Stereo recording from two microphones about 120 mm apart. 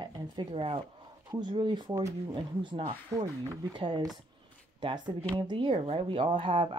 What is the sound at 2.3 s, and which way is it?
Speech, 40° right (ahead or behind).